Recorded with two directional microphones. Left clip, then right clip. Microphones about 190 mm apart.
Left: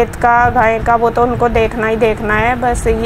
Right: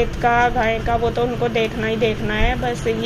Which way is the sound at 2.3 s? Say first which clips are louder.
Left 8 dB; centre (ahead or behind).